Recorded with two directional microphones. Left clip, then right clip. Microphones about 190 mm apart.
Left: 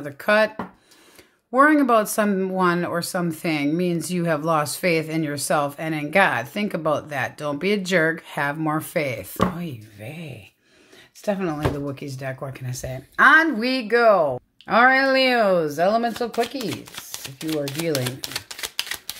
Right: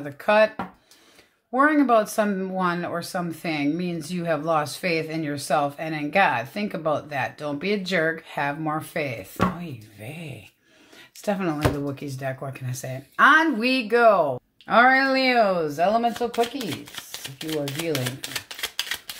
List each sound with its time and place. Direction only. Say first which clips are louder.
0.0 s speech: even; 40° left (ahead or behind)
1.5 s speech: left 3 dB; 40° left (ahead or behind)
9.9 s speech: left 1 dB; 25° left (ahead or behind)
11.2 s speech: even; 10° left (ahead or behind); by 16.1 s 50° left (ahead or behind)
16.6 s speech: left 2 dB; 30° left (ahead or behind)
17.8 s typewriter: left 2 dB; 35° left (ahead or behind)